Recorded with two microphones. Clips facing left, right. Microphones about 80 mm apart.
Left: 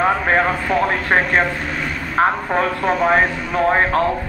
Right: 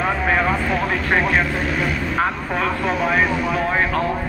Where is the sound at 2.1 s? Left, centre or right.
Left.